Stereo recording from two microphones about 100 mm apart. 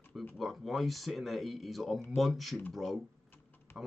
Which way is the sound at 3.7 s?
25° left (ahead or behind).